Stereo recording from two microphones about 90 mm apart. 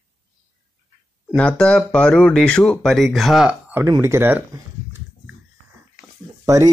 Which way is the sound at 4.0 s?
30° right (ahead or behind).